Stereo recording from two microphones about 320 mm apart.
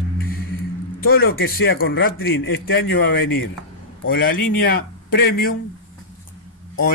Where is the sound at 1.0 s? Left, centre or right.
Left.